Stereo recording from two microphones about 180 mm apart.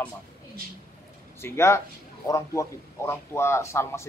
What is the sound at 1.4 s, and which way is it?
A man's voice, 15° left (ahead or behind).